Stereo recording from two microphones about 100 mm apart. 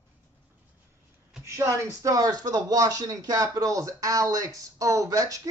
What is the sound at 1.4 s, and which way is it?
Speech, 30° right (ahead or behind).